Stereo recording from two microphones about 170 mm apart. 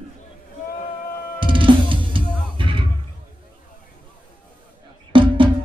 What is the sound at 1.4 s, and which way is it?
Music, 30° right (ahead or behind).